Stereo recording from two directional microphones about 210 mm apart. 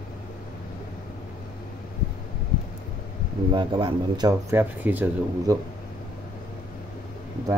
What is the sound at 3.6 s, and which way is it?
Speech, 20° right (ahead or behind).